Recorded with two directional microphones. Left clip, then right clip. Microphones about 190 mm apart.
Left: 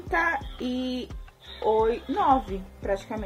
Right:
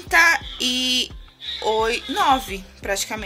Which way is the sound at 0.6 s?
5° left (ahead or behind).